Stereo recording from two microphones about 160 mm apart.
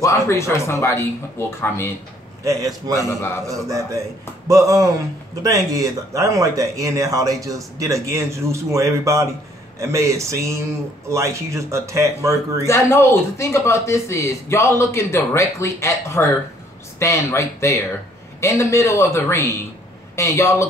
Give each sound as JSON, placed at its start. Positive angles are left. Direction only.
{"t": 0.0, "sound": "speech", "side_deg": 20}
{"t": 2.4, "sound": "speech", "side_deg": -20}
{"t": 12.6, "sound": "speech", "side_deg": 15}